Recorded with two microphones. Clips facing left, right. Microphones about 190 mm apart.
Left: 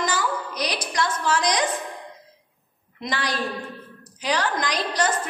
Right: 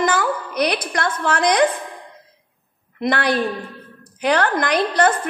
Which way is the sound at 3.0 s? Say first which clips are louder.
Right 8 dB; 60° right (ahead or behind).